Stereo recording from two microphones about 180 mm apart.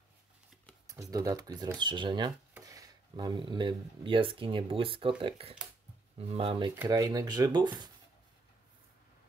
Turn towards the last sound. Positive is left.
turn(degrees=-25)  # may be behind; listen again after turning